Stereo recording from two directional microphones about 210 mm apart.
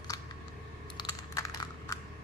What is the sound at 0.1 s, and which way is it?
Typing, 15° left (ahead or behind).